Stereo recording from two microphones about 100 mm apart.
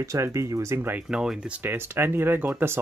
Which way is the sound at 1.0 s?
5° right (ahead or behind).